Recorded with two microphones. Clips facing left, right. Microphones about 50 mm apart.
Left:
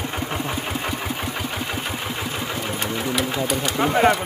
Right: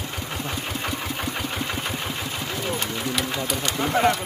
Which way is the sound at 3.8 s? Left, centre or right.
Left.